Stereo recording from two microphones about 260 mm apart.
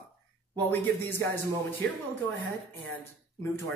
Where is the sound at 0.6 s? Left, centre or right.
Centre.